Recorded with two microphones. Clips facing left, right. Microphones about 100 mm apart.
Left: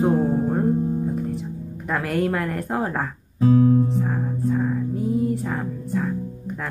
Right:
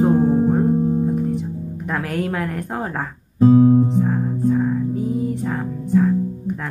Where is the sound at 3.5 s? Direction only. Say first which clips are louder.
Right 4 dB; 25° right (ahead or behind).